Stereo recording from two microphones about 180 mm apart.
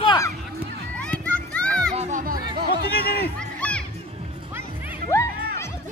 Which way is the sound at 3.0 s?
60° left (ahead or behind).